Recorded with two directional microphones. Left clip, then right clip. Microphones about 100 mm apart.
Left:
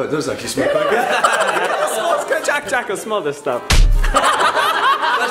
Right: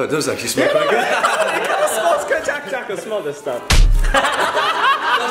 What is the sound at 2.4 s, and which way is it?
Speech, 70° left (ahead or behind).